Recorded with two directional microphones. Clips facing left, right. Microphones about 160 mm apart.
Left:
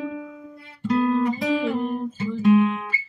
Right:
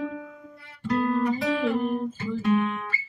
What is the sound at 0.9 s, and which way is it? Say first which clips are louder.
Guitar: left 3 dB; 20° left (ahead or behind).